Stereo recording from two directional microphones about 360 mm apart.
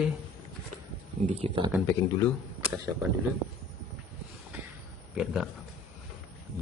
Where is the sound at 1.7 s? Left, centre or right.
Centre.